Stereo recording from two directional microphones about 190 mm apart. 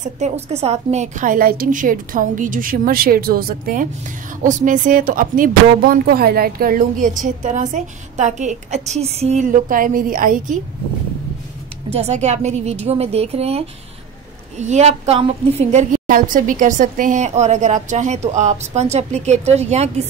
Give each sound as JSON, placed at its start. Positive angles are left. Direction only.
{"t": 0.2, "sound": "speech", "side_deg": -35}
{"t": 11.9, "sound": "a woman's voice", "side_deg": -35}